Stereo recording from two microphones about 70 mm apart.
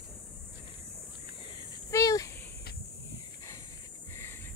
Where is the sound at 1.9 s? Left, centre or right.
Left.